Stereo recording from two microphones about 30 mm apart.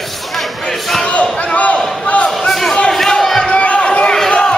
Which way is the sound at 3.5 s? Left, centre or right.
Left.